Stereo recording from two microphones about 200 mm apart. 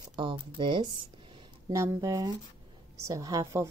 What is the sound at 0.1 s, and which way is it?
A woman's voice, 25° right (ahead or behind).